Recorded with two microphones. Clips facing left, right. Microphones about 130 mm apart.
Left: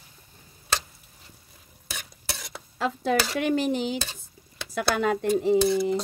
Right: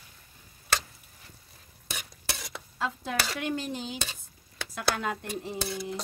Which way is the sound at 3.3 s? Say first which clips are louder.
Left 8 dB; 80° left.